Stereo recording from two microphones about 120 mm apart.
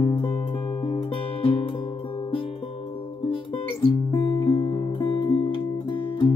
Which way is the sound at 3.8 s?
45° left (ahead or behind).